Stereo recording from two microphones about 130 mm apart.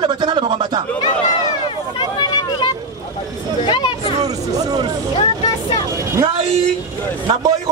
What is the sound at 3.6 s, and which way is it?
Chatter, 35° left (ahead or behind).